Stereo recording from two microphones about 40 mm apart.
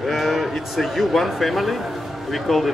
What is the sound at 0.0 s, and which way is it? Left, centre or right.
Speech, centre.